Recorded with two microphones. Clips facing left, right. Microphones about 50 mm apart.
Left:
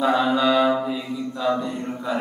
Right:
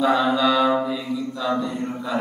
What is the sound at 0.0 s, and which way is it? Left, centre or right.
Mantra, left.